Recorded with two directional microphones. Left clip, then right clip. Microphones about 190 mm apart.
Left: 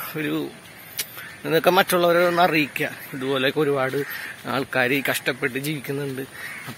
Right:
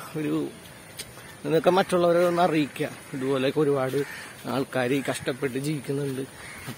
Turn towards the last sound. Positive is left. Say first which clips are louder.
# left 2 dB
turn(degrees=0)  # may be behind; listen again after turning